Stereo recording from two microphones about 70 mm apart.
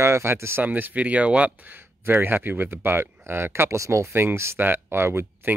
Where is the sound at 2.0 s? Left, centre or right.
Right.